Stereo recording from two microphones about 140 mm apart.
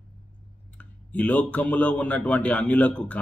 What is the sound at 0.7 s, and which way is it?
Speech, 10° left (ahead or behind).